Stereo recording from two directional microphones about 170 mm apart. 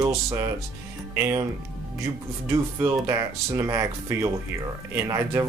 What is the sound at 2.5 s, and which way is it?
Speech, 15° right (ahead or behind).